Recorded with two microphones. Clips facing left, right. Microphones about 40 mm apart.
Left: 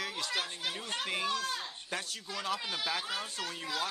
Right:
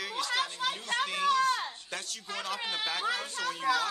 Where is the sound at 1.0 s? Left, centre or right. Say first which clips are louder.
Right 5 dB; centre.